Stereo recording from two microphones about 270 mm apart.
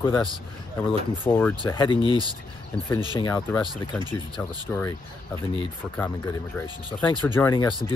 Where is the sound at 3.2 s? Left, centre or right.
Centre.